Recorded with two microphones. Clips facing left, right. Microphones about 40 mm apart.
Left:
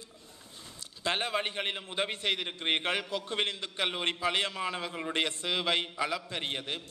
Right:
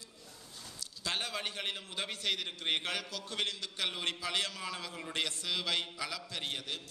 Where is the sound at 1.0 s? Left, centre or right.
Left.